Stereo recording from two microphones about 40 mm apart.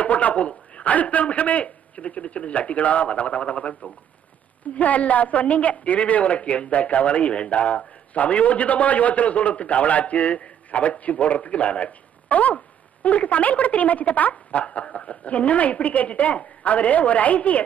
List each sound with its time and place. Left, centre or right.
0.0 s a sound: left
0.5 s a woman's voice: left
4.7 s a woman's voice: left
14.3 s a woman's voice: left